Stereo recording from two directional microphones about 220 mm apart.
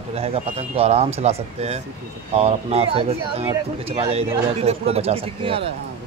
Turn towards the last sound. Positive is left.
turn(degrees=-25)  # may be behind; listen again after turning